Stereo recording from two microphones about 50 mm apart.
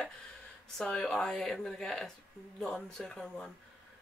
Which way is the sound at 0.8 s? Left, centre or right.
Centre.